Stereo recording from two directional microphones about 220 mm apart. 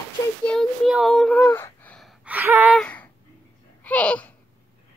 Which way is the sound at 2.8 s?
5° left (ahead or behind).